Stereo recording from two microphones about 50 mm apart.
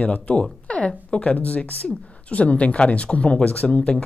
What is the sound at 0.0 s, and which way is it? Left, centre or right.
Speech, left.